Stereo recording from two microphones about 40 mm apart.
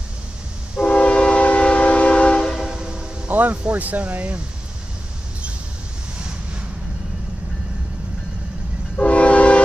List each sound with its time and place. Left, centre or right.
0.8 s train: left
2.6 s train: centre
3.3 s music: right
3.7 s speech: right
8.9 s train: left